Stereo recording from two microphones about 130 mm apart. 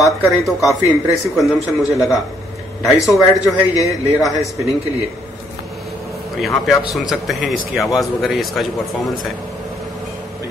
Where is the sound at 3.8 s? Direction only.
25° left (ahead or behind).